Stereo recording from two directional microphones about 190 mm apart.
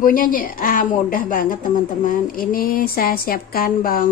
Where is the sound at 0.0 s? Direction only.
45° left (ahead or behind).